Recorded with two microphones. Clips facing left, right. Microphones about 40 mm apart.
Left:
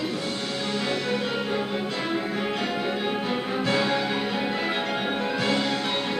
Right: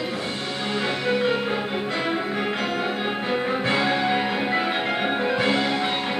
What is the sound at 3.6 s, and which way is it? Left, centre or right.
Music, centre.